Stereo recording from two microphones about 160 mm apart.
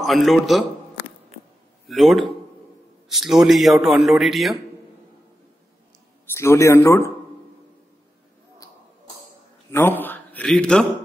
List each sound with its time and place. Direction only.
0.0 s a man's voice: centre (ahead or behind)
1.9 s a man's voice: centre (ahead or behind)
6.3 s speech: 15° left (ahead or behind)
9.7 s a man's voice: 15° left (ahead or behind)